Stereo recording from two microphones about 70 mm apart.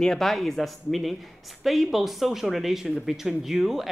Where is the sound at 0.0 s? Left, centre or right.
Centre.